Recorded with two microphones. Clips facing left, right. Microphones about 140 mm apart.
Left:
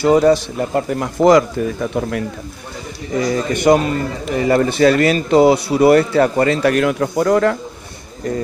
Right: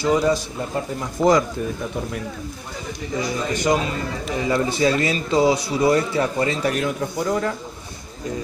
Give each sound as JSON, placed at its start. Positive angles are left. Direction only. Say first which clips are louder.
{"t": 0.0, "sound": "speech", "louder": "left 7 dB", "side_deg": 60}
{"t": 3.3, "sound": "speech", "louder": "left 8 dB", "side_deg": 60}
{"t": 6.6, "sound": "speech", "louder": "left 7 dB", "side_deg": 80}